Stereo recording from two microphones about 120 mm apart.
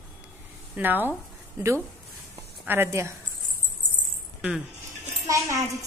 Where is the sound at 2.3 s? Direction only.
20° right (ahead or behind).